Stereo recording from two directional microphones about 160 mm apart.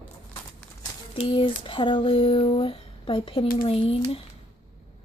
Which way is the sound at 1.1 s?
35° left (ahead or behind).